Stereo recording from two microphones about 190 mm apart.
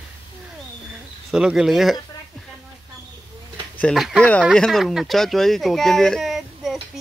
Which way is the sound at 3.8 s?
5° left (ahead or behind).